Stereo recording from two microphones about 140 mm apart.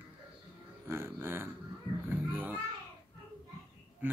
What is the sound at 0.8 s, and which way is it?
Speech, 20° right (ahead or behind).